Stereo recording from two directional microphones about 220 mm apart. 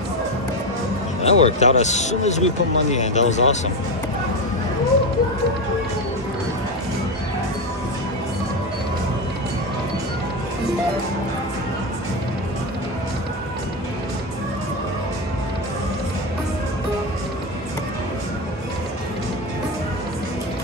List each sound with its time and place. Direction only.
1.2 s speech: 30° left (ahead or behind)